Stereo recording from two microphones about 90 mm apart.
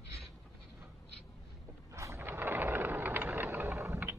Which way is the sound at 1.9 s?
30° right (ahead or behind).